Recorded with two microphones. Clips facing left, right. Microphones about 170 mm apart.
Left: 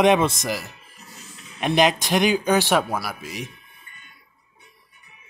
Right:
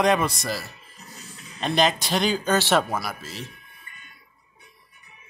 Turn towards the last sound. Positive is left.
turn(degrees=15)  # may be behind; listen again after turning